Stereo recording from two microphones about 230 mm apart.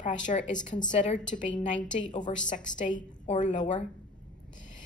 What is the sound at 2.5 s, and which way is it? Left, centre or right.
A woman's voice, left.